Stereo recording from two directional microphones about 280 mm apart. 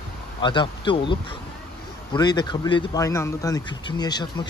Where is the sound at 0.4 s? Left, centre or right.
Centre.